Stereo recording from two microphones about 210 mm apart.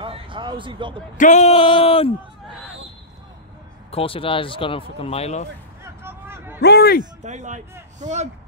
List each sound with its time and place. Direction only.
0.0 s a sound: 25° right (ahead or behind)
1.1 s speech: 35° left (ahead or behind)
3.9 s speech: 25° left (ahead or behind)
5.9 s a sound: 10° right (ahead or behind)
6.6 s a man's voice: 50° left (ahead or behind)
7.2 s a man's voice: 35° right (ahead or behind)